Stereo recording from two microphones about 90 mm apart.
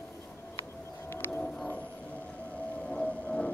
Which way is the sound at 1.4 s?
10° left (ahead or behind).